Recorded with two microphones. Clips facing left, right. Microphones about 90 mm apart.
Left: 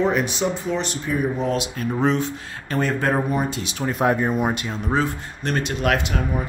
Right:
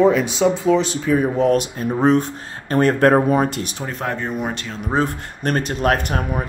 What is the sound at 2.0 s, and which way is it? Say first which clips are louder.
Speech: right 6 dB; 45° right (ahead or behind).